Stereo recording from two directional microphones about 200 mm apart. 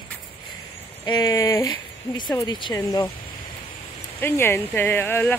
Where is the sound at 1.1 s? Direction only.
20° left (ahead or behind).